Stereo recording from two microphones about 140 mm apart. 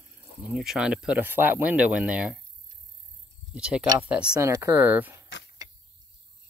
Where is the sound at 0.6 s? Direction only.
5° right (ahead or behind).